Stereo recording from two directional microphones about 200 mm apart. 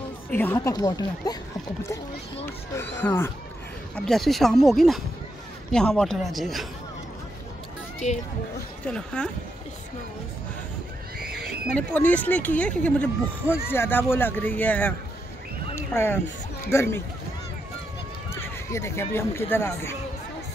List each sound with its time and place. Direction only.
0.3 s speech: 10° left (ahead or behind)
3.0 s speech: 10° left (ahead or behind)
8.0 s speech: 35° left (ahead or behind)
8.8 s speech: 5° left (ahead or behind)
11.1 s neigh: 50° right (ahead or behind)
11.7 s speech: 5° left (ahead or behind)
15.7 s a sound: 10° left (ahead or behind)
16.7 s speech: 10° left (ahead or behind)
18.3 s speech: 15° left (ahead or behind)